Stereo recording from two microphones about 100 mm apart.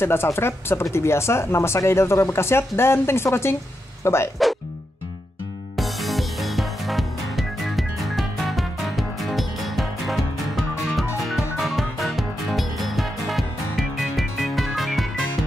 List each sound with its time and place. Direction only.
0.0 s speech: 25° left (ahead or behind)
5.8 s music: centre (ahead or behind)